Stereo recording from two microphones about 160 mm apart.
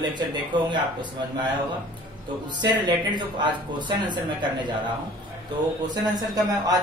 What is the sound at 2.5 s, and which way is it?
Speech, 30° right (ahead or behind).